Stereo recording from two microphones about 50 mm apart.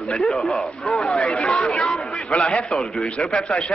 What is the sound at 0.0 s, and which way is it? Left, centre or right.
Speech, centre.